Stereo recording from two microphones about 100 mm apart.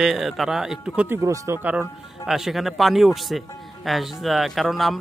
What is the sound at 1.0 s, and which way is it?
Speech, 35° right (ahead or behind).